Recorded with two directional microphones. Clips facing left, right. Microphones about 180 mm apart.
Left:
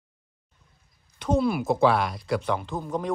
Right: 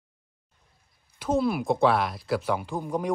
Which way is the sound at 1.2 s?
Centre (ahead or behind).